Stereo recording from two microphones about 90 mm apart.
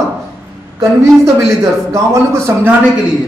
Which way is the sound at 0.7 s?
35° right (ahead or behind).